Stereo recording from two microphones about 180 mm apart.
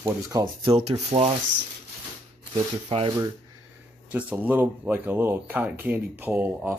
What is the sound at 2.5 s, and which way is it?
Speech, 30° right (ahead or behind).